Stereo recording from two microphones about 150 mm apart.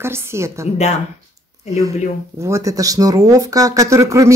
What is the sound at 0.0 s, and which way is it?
Speech, 15° right (ahead or behind).